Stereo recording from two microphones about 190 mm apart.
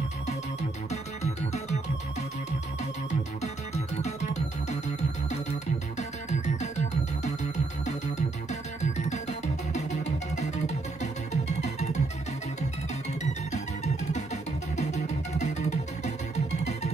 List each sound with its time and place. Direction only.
1.2 s music: 35° left (ahead or behind)
3.7 s music: 35° left (ahead or behind)
8.5 s music: 35° left (ahead or behind)
14.1 s music: 35° left (ahead or behind)